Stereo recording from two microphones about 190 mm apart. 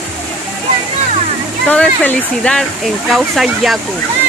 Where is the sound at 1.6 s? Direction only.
5° left (ahead or behind).